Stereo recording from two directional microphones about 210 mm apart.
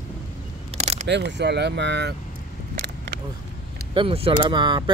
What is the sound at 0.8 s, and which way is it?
Single-lens reflex camera, 30° right (ahead or behind).